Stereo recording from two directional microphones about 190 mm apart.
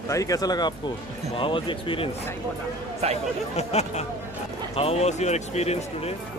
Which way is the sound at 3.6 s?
35° left (ahead or behind).